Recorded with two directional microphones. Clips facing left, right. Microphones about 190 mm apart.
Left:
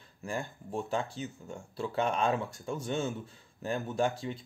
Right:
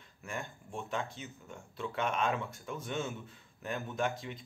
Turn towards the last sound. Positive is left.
turn(degrees=35)  # may be behind; listen again after turning